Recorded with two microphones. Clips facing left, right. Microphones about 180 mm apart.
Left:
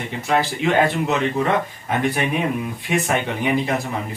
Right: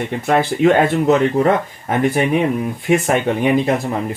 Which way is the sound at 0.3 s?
50° right (ahead or behind).